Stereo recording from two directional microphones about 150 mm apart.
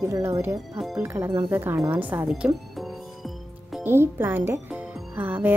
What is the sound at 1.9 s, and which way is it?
Music, 10° right (ahead or behind).